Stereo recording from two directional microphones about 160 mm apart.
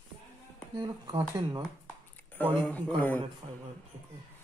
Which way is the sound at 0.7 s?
25° right (ahead or behind).